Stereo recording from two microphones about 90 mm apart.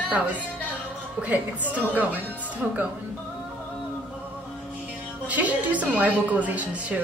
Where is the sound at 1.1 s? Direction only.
15° right (ahead or behind).